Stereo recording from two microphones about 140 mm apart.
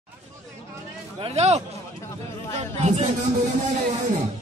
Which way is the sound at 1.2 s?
50° right (ahead or behind).